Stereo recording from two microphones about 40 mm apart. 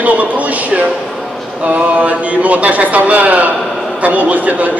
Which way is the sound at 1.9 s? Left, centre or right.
Right.